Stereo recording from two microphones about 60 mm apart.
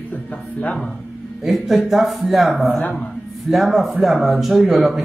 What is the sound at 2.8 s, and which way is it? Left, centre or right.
Speech, left.